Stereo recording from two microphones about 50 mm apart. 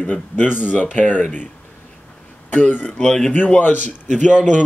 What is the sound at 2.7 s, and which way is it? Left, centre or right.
Speech, left.